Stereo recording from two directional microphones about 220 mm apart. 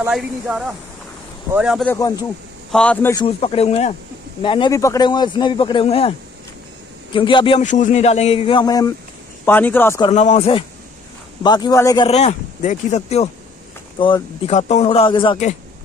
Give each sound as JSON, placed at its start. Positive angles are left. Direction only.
{"t": 0.0, "sound": "speech", "side_deg": 0}
{"t": 1.9, "sound": "a man's voice", "side_deg": 15}
{"t": 3.3, "sound": "a man's voice", "side_deg": 25}
{"t": 7.2, "sound": "a man's voice", "side_deg": 25}
{"t": 7.6, "sound": "a man's voice", "side_deg": 35}
{"t": 10.0, "sound": "a man's voice", "side_deg": 30}
{"t": 12.1, "sound": "a man's voice", "side_deg": 30}